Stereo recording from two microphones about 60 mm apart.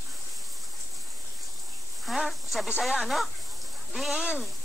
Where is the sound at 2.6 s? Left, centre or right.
Centre.